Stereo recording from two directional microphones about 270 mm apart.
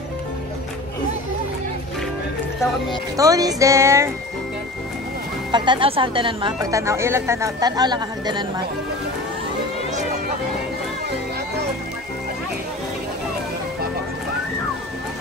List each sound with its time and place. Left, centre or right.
3.2 s a woman's voice: centre
5.5 s a woman's voice: centre